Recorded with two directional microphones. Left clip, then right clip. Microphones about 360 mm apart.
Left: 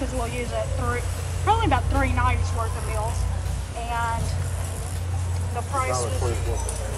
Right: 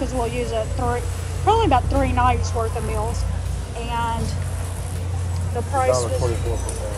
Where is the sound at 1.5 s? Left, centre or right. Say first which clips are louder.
Right 5 dB; centre.